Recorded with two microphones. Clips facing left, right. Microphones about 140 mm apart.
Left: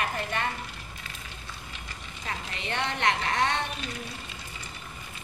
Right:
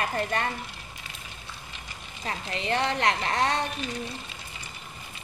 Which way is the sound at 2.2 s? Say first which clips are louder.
Right 5 dB; 35° right (ahead or behind).